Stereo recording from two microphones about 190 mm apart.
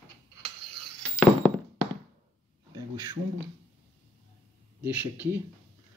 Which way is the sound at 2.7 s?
20° right (ahead or behind).